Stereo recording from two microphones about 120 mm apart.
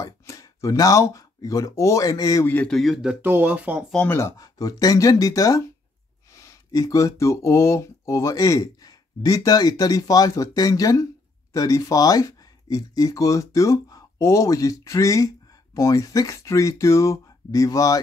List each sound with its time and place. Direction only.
0.0 s speech: 25° left (ahead or behind)
2.4 s speech: 15° left (ahead or behind)
2.7 s speech: centre (ahead or behind)
3.2 s speech: 15° right (ahead or behind)
4.1 s speech: 25° left (ahead or behind)